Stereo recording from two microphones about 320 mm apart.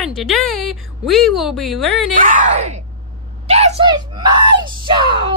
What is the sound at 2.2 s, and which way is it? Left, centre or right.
Speech, right.